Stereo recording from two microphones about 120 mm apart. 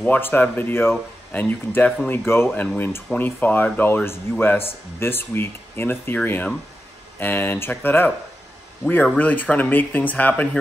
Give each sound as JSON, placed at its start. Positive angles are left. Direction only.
{"t": 0.0, "sound": "speech", "side_deg": 15}
{"t": 9.2, "sound": "speech", "side_deg": 15}